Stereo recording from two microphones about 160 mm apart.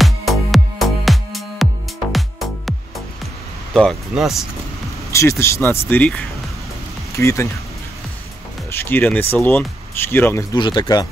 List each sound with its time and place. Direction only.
0.0 s music: centre (ahead or behind)
3.7 s speech: centre (ahead or behind)
5.1 s speech: 15° left (ahead or behind)
8.7 s speech: 15° left (ahead or behind)
10.5 s speech: 30° left (ahead or behind)